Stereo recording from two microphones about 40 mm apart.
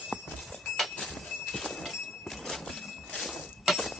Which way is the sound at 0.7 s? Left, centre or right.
Centre.